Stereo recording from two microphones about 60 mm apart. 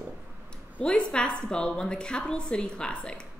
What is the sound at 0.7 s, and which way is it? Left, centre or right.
A woman's voice, centre.